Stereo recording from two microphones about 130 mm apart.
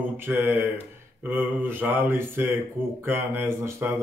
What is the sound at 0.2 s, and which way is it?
Speech, 15° right (ahead or behind).